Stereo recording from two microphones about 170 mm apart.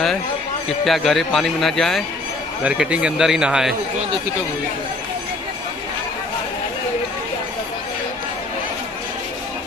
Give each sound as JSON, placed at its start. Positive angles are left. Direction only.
{"t": 0.7, "sound": "speech", "side_deg": 0}